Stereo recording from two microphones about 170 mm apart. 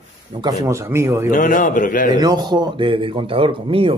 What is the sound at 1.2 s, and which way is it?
Speech, 50° left (ahead or behind).